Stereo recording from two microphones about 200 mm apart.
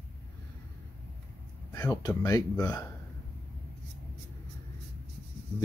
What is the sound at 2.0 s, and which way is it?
Speech, 15° left (ahead or behind).